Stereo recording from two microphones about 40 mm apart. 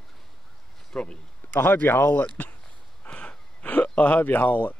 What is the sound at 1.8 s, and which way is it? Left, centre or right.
Speech, left.